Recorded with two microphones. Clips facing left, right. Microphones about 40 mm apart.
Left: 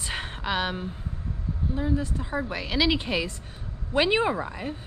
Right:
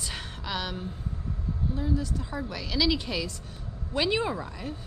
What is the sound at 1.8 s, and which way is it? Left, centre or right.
A woman's voice, left.